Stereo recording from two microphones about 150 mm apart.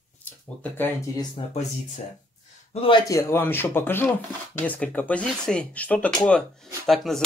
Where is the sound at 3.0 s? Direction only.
20° left (ahead or behind).